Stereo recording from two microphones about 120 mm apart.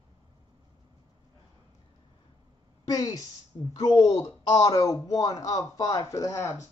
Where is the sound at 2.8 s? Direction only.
30° left (ahead or behind).